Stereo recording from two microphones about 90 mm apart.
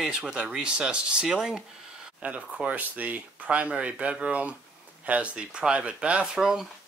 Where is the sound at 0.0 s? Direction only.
5° right (ahead or behind).